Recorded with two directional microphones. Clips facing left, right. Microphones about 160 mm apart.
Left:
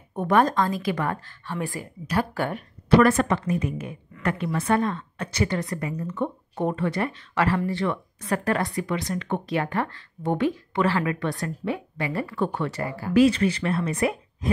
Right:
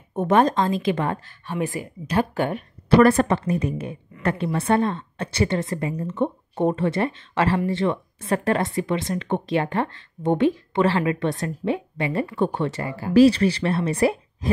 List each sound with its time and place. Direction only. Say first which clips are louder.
0.1 s a woman's voice: right 2 dB; 25° right (ahead or behind)
3.0 s a woman's voice: right 5 dB; 30° right (ahead or behind)
13.1 s speech: right 4 dB; 35° right (ahead or behind)